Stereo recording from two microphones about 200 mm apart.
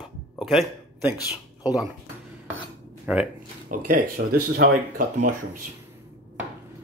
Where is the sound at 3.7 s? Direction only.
45° right (ahead or behind).